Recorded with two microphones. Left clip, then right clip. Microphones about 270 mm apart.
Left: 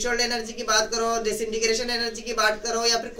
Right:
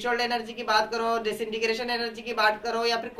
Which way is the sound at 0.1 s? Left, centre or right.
Right.